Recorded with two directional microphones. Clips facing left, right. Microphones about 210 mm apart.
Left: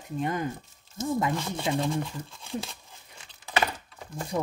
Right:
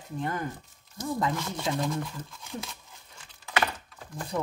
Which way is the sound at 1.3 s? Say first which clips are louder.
Left 2 dB; 25° left (ahead or behind).